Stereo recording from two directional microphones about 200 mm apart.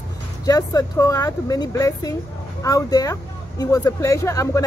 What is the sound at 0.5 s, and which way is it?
Speech, 15° left (ahead or behind).